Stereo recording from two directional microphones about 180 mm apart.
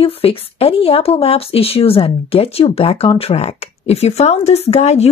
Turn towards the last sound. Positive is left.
turn(degrees=35)  # may be behind; listen again after turning